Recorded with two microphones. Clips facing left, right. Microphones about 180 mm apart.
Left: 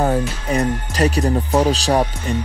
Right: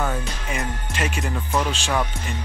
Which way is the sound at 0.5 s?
35° left (ahead or behind).